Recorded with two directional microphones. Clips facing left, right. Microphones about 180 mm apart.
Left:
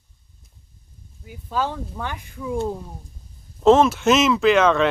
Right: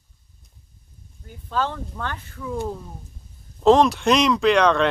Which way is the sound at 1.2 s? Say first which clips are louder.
Even; 10° left (ahead or behind).